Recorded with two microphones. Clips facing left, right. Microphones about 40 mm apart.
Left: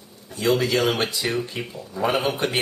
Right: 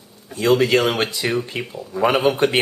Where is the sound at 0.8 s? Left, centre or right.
Centre.